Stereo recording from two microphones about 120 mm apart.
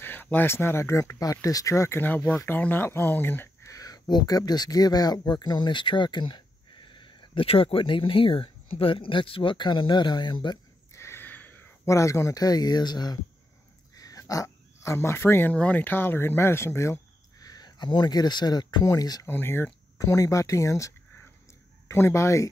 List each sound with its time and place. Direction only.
0.0 s speech: 15° left (ahead or behind)
3.7 s speech: 30° left (ahead or behind)
10.9 s a sound: 20° left (ahead or behind)
13.9 s speech: 30° left (ahead or behind)
19.2 s speech: 20° left (ahead or behind)